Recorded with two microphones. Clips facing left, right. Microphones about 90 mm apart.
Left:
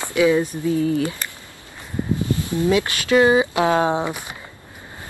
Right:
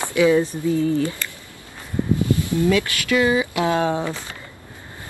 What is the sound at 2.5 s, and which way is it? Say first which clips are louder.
Speech: left 2 dB; 25° left (ahead or behind).